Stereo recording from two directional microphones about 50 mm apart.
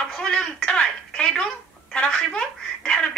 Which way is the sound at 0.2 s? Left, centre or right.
Centre.